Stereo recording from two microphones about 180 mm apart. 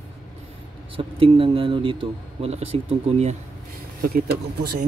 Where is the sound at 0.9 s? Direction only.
30° right (ahead or behind).